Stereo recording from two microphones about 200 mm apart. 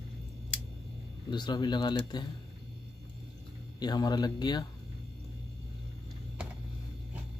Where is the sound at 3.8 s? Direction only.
20° left (ahead or behind).